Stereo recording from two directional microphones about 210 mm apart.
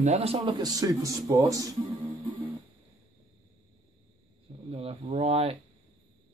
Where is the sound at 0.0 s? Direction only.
30° right (ahead or behind).